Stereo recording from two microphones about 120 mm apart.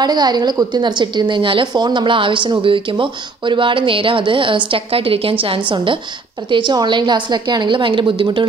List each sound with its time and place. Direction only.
0.0 s a woman's voice: 35° right (ahead or behind)